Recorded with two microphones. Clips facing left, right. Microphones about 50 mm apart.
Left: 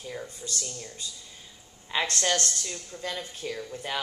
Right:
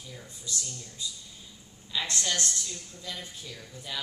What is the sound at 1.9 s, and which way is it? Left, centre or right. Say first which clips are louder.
Speech: left 5 dB; left.